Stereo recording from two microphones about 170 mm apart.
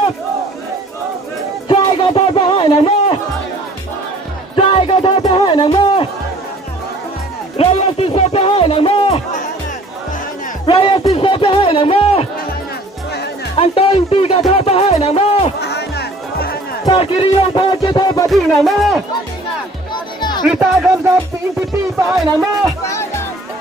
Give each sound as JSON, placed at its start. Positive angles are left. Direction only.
{"t": 1.7, "sound": "a sound", "side_deg": 35}
{"t": 4.6, "sound": "music", "side_deg": 30}
{"t": 7.5, "sound": "music", "side_deg": 35}
{"t": 10.7, "sound": "music", "side_deg": 30}
{"t": 13.6, "sound": "speech", "side_deg": 35}
{"t": 15.6, "sound": "music", "side_deg": 75}
{"t": 16.9, "sound": "music", "side_deg": 35}
{"t": 18.3, "sound": "speech", "side_deg": 0}
{"t": 20.2, "sound": "music", "side_deg": 25}
{"t": 20.4, "sound": "speech", "side_deg": -5}
{"t": 22.1, "sound": "music", "side_deg": -20}